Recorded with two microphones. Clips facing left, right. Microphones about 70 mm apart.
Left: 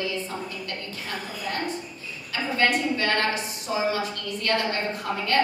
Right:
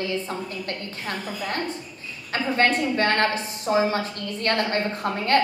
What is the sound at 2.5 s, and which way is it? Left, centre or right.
A woman's voice, right.